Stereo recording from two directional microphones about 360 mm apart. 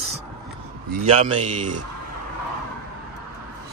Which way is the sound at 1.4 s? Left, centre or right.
Centre.